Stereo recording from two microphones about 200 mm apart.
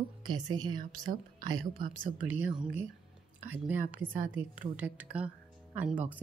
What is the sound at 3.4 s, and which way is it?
Speech, 10° right (ahead or behind).